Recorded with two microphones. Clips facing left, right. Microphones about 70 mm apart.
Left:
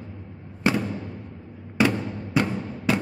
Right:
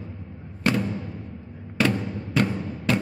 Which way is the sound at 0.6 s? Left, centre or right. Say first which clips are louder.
Even; centre.